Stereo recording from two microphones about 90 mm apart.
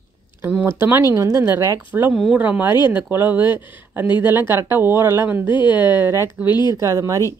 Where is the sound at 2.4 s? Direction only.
20° right (ahead or behind).